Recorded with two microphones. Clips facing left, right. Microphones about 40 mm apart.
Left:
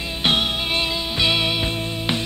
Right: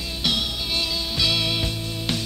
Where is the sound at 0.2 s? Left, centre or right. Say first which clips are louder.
Left 5 dB; left.